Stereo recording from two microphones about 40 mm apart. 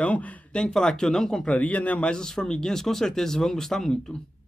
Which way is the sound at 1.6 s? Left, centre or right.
Left.